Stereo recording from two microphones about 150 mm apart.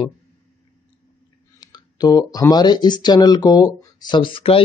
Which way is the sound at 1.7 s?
25° left (ahead or behind).